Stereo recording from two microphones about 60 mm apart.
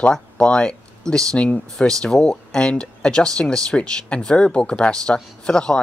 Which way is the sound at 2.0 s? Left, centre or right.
Centre.